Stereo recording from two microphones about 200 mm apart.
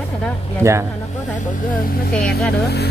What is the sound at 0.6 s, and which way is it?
Speech, 15° right (ahead or behind).